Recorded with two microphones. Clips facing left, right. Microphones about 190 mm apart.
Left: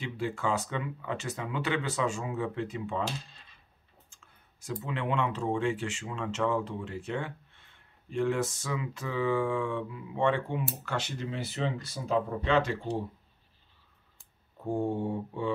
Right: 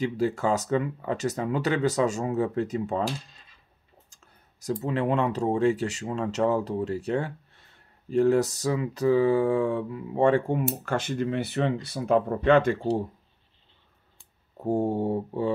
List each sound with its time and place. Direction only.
0.0 s speech: 40° right (ahead or behind)
4.1 s clicking: 40° right (ahead or behind)
4.8 s speech: 40° right (ahead or behind); by 12.7 s 55° right (ahead or behind)
14.6 s speech: 40° right (ahead or behind)